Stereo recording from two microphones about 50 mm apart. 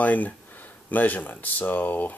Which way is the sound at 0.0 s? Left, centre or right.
Left.